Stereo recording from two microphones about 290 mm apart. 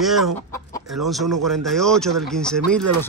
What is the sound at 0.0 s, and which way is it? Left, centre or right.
Chicken, centre.